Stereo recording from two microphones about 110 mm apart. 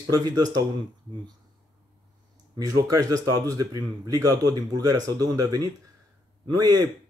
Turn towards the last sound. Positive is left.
turn(degrees=-40)  # may be behind; listen again after turning